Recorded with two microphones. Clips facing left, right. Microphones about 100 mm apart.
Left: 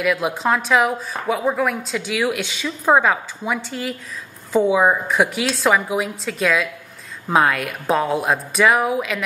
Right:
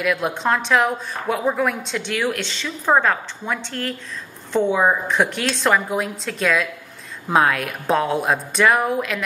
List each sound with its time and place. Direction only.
0.0 s a woman's voice: centre (ahead or behind)